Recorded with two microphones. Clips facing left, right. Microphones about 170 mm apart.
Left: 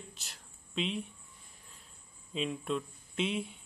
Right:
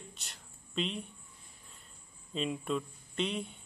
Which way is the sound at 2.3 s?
Centre (ahead or behind).